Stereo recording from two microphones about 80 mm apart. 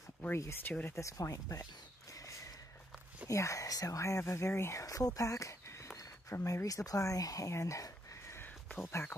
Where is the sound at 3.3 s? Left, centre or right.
Left.